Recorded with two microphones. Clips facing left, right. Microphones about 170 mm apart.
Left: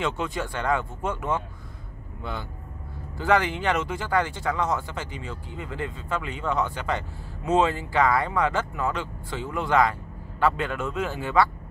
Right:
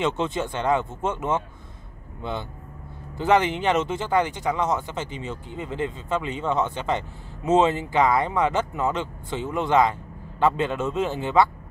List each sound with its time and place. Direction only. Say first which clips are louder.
0.0 s speech: right 3 dB; 25° right (ahead or behind)